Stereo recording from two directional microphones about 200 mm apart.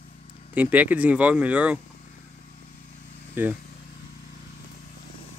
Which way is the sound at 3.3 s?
10° right (ahead or behind).